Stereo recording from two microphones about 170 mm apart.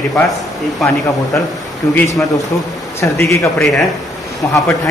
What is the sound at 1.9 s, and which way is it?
A man's voice, 15° left (ahead or behind).